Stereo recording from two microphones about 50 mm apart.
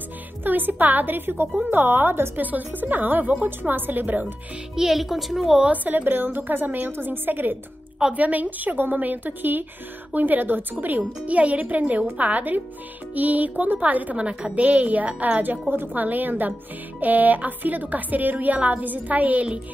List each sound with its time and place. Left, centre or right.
0.4 s a woman's voice: right
2.4 s a woman's voice: right
4.7 s a woman's voice: centre
5.7 s a woman's voice: right